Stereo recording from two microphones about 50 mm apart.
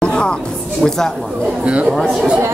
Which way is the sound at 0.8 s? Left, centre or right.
Centre.